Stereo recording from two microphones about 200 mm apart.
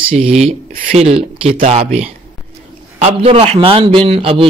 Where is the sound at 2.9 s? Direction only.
30° right (ahead or behind).